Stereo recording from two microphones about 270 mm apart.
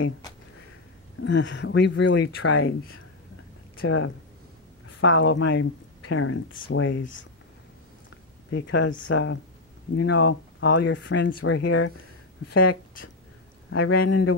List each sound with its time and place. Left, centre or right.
1.2 s speech: left
8.5 s speech: left
12.4 s speech: left